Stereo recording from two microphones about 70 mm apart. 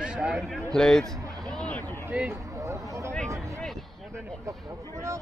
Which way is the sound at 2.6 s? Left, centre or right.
Right.